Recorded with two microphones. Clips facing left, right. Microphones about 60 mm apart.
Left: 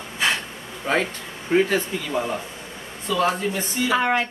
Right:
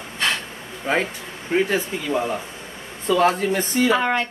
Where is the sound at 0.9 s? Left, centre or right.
Centre.